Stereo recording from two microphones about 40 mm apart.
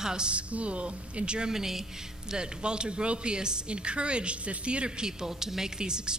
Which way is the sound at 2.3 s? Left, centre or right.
Right.